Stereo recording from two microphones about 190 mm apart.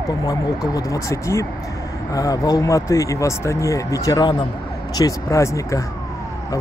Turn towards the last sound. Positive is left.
turn(degrees=15)  # may be behind; listen again after turning